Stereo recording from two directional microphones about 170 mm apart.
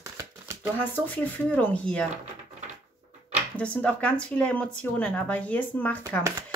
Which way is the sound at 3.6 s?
5° left (ahead or behind).